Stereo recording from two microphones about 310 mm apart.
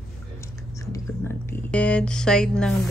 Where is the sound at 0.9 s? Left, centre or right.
Centre.